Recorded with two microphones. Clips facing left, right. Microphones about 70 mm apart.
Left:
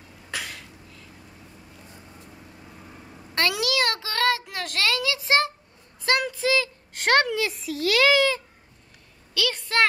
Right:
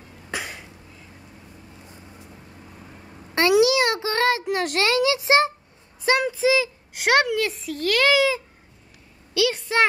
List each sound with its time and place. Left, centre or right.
0.3 s cough: right
3.3 s a sound: right
9.3 s a woman's voice: centre